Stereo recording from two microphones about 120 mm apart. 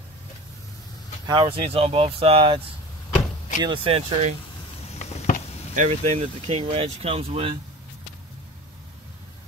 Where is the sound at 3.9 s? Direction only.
55° right (ahead or behind).